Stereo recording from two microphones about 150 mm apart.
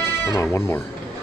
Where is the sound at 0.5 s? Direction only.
15° left (ahead or behind).